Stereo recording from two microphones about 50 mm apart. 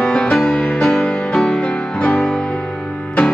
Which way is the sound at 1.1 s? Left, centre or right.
Left.